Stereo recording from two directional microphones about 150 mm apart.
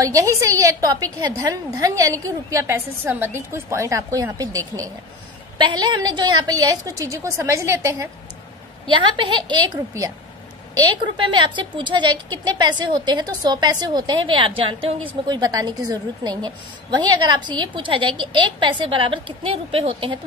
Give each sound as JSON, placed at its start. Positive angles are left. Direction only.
{"t": 0.0, "sound": "a woman's voice", "side_deg": -20}
{"t": 8.8, "sound": "a woman's voice", "side_deg": -35}